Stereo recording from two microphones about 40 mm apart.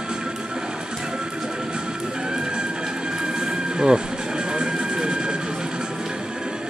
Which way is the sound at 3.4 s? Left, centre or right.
Centre.